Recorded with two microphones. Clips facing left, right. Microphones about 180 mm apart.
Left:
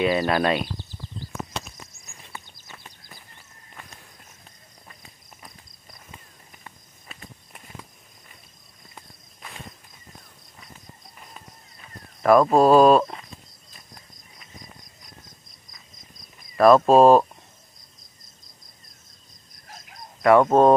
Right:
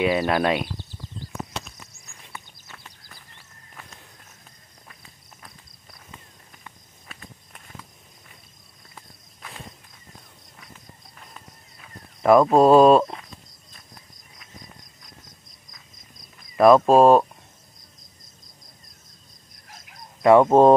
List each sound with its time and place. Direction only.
0.0 s speech: 10° right (ahead or behind)
2.3 s a sound: 15° left (ahead or behind)
7.1 s walk: centre (ahead or behind)
12.2 s a sound: 15° right (ahead or behind)
12.5 s speech: 25° right (ahead or behind)
16.5 s speech: 15° right (ahead or behind)
16.8 s speech: centre (ahead or behind)
20.2 s speech: 20° right (ahead or behind)